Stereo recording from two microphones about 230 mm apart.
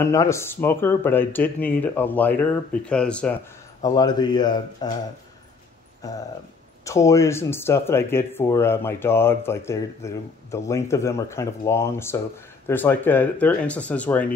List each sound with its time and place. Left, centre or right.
0.0 s speech: centre
3.8 s speech: centre
6.0 s speech: centre